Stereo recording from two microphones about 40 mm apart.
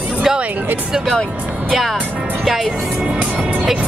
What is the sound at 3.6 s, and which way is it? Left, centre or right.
Speech, right.